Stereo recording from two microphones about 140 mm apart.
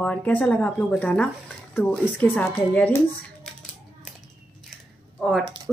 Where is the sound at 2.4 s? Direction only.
15° left (ahead or behind).